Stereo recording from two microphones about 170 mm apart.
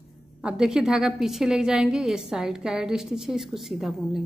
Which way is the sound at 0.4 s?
5° right (ahead or behind).